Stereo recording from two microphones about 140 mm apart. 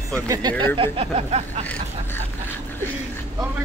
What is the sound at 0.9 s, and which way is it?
Speech, 50° right (ahead or behind).